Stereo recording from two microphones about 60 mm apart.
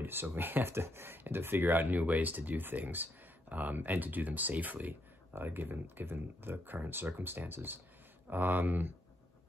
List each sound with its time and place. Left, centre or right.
0.0 s speech: right